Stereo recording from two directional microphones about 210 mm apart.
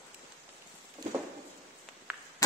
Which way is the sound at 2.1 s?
5° right (ahead or behind).